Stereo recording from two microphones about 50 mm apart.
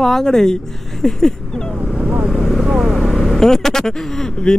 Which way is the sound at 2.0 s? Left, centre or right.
Right.